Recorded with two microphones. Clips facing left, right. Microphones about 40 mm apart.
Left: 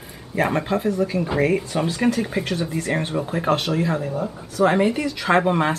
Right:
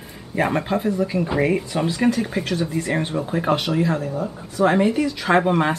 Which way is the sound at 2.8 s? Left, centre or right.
Centre.